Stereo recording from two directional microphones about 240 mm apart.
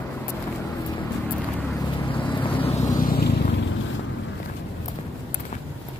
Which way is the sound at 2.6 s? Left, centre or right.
Centre.